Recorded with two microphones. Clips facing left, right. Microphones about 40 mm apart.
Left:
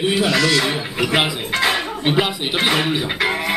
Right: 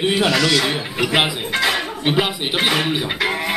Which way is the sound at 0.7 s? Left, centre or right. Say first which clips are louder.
Even; centre.